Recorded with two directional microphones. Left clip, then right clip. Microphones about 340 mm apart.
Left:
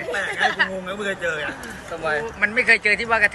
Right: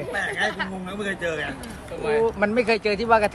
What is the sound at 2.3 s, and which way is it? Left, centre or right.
Speech, centre.